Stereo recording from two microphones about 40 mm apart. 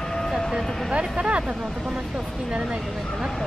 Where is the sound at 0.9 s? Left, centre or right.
Right.